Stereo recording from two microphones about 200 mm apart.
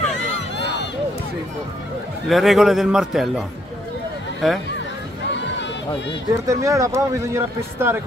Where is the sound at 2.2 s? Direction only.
Centre (ahead or behind).